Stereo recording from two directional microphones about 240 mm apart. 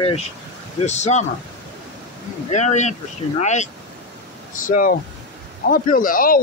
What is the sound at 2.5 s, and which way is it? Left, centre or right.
Speech, left.